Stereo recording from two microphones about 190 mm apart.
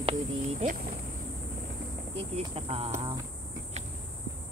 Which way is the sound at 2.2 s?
30° right (ahead or behind).